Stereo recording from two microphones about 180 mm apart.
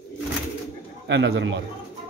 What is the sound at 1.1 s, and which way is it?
Speech, 70° right (ahead or behind).